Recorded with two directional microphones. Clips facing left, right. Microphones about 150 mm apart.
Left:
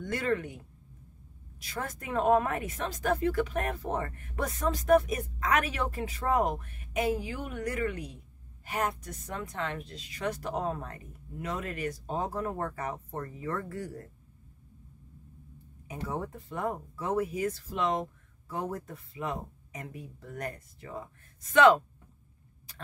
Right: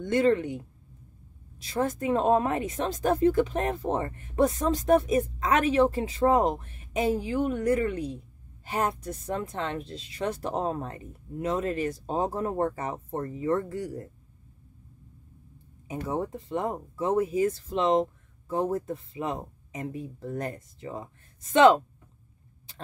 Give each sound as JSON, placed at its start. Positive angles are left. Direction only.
{"t": 0.0, "sound": "speech", "side_deg": -25}
{"t": 1.6, "sound": "speech", "side_deg": -25}
{"t": 15.9, "sound": "speech", "side_deg": -20}